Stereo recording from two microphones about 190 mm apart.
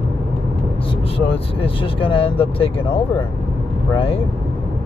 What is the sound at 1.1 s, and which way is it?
Speech, 30° left (ahead or behind).